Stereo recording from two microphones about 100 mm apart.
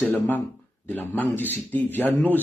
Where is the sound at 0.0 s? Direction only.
20° left (ahead or behind).